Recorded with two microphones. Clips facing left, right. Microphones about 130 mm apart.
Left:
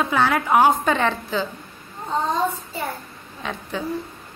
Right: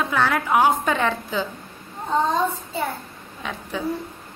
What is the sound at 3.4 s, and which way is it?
Speech, 5° right (ahead or behind).